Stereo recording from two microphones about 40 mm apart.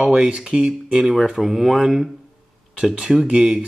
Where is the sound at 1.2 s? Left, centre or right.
Centre.